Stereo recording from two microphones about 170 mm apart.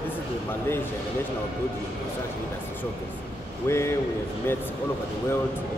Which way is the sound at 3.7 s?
15° left (ahead or behind).